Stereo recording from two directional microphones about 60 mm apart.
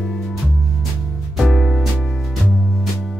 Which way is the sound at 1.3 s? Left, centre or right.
Centre.